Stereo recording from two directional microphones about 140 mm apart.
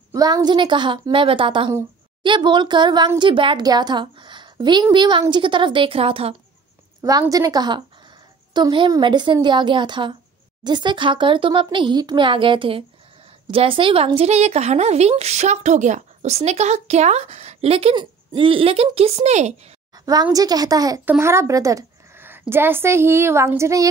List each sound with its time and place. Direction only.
0.1 s speech: 25° right (ahead or behind); by 6.3 s 40° right (ahead or behind)
7.0 s a woman's voice: 25° right (ahead or behind); by 19.5 s 55° right (ahead or behind)
20.3 s a woman's voice: 25° right (ahead or behind)